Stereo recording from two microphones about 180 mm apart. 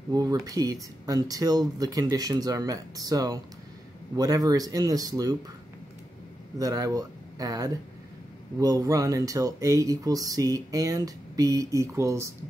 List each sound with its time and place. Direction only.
0.1 s speech: 20° right (ahead or behind)
6.6 s speech: 20° right (ahead or behind)